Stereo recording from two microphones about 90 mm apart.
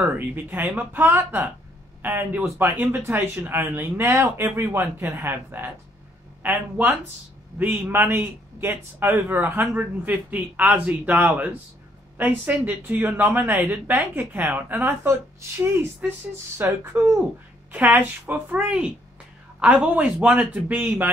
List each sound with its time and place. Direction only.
0.0 s a man's voice: 20° right (ahead or behind)
16.0 s a man's voice: 15° right (ahead or behind)
16.5 s a man's voice: 25° right (ahead or behind)
17.7 s a man's voice: 15° right (ahead or behind)